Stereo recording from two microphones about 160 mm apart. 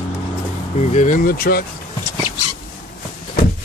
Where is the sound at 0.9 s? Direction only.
50° left (ahead or behind).